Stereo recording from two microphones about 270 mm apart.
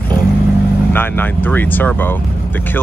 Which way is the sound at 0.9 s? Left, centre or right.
Centre.